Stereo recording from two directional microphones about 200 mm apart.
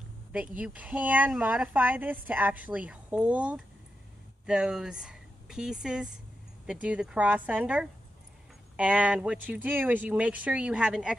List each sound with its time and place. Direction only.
0.6 s a woman's voice: 5° right (ahead or behind)